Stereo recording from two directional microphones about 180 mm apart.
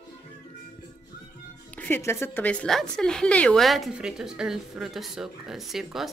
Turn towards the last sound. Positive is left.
turn(degrees=0)  # may be behind; listen again after turning